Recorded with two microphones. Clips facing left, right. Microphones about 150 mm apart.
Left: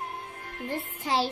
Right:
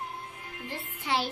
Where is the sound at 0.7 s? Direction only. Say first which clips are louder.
Left 2 dB; 40° left (ahead or behind).